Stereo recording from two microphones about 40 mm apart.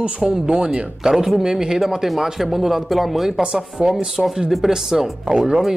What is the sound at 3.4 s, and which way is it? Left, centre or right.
Speech, centre.